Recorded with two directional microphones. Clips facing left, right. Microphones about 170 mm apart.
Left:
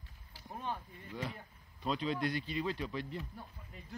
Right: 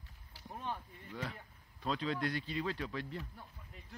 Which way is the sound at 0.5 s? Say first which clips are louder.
Left 1 dB; 10° left (ahead or behind).